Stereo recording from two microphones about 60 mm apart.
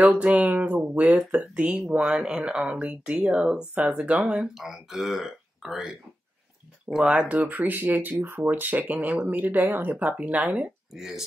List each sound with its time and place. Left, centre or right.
0.0 s speech: right
2.0 s speech: centre; by 4.5 s right
4.6 s speech: centre
6.9 s speech: centre
10.6 s speech: centre